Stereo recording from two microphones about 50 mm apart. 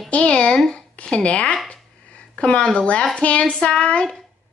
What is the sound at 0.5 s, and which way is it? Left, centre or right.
Speech, centre.